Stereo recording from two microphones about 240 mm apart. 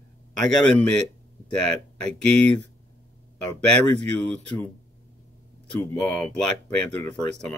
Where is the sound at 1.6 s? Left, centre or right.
Right.